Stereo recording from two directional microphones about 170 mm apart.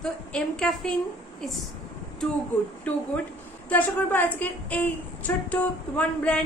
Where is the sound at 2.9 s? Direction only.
10° left (ahead or behind).